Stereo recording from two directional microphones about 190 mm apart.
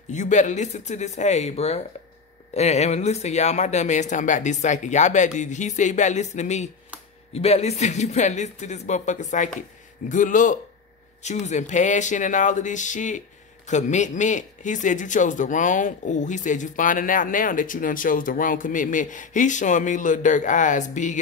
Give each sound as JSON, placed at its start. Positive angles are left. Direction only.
{"t": 0.1, "sound": "a man's voice", "side_deg": 40}